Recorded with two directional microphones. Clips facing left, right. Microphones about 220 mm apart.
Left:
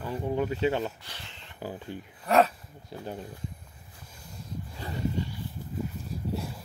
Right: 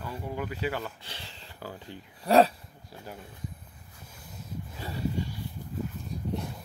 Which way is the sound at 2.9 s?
30° left (ahead or behind).